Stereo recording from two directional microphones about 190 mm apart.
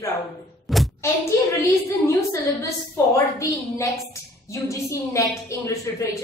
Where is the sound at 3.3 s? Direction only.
15° left (ahead or behind).